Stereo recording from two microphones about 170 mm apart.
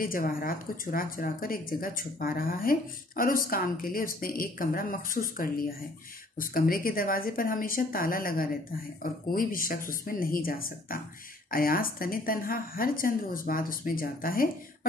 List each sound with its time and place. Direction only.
0.0 s speech: 55° left (ahead or behind)